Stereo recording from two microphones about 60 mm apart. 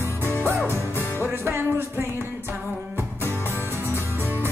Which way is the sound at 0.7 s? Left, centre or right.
Right.